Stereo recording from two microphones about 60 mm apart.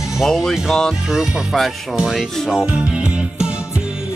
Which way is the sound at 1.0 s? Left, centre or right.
Centre.